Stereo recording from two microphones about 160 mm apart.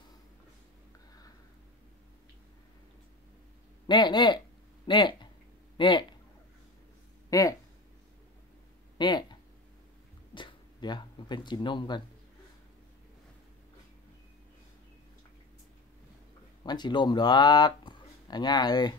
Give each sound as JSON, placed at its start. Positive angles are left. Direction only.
{"t": 3.8, "sound": "speech", "side_deg": 30}
{"t": 7.2, "sound": "speech", "side_deg": 20}
{"t": 8.9, "sound": "a sound", "side_deg": 25}
{"t": 16.6, "sound": "speech", "side_deg": 25}